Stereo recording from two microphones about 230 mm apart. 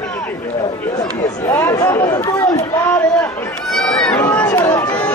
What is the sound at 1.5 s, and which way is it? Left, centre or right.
Chatter, centre.